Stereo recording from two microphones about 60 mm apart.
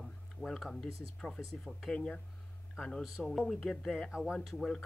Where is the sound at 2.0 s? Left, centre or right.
Centre.